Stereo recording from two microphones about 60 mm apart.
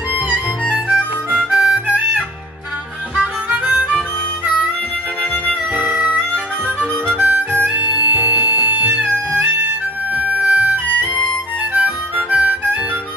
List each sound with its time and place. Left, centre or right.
0.9 s harmonica: right
3.2 s harmonica: right
5.8 s music: right
7.2 s harmonica: right
7.7 s music: right
8.5 s music: left
8.8 s music: right
11.7 s harmonica: right